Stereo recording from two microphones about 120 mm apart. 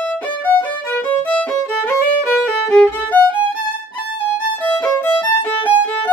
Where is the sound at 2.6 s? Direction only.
15° left (ahead or behind).